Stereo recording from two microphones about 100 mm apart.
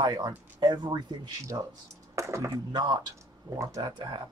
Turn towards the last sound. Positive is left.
turn(degrees=-50)  # may be behind; listen again after turning